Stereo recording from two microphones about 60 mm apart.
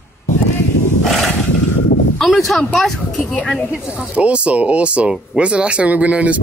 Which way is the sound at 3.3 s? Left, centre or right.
Left.